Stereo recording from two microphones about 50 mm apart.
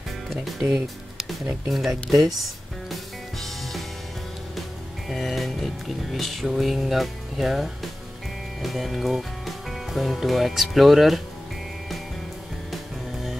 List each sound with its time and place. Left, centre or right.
1.7 s music: centre
5.1 s music: centre
9.7 s speech: centre